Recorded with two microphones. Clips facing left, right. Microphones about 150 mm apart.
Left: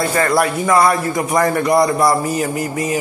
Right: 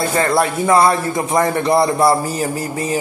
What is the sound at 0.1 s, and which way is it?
Speech, 25° right (ahead or behind).